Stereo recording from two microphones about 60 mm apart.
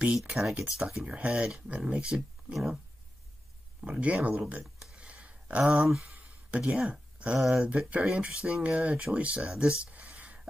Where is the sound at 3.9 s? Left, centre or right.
Right.